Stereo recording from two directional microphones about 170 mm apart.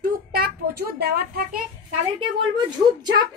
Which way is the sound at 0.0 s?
60° right (ahead or behind).